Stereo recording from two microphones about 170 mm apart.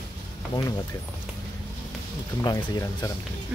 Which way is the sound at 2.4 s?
20° left (ahead or behind).